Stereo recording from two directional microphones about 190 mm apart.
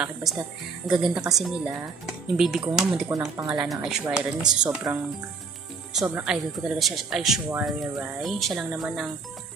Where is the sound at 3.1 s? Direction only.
20° right (ahead or behind).